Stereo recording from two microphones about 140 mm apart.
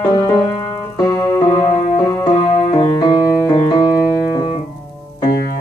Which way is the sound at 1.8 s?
45° left (ahead or behind).